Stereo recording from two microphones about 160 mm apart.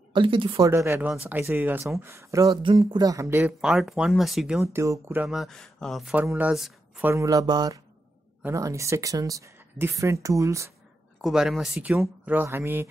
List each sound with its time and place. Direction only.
0.1 s speech: 30° right (ahead or behind)
0.6 s speech: 20° right (ahead or behind)
3.6 s speech: centre (ahead or behind)
4.7 s speech: 20° right (ahead or behind); by 6.1 s centre (ahead or behind)
6.1 s speech: 10° right (ahead or behind)
7.1 s speech: 20° right (ahead or behind)
11.1 s speech: centre (ahead or behind)